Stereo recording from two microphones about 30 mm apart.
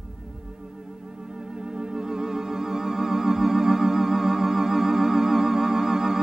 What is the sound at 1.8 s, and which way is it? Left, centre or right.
Music, right.